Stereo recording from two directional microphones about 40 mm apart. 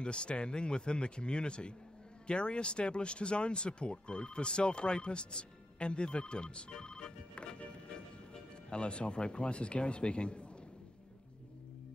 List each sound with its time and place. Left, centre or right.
0.0 s speech: left
8.6 s speech: left